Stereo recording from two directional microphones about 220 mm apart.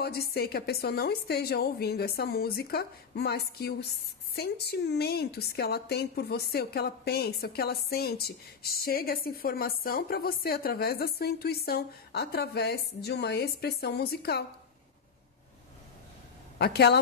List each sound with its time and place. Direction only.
0.0 s a woman's voice: 45° left (ahead or behind)
16.5 s a woman's voice: 45° left (ahead or behind)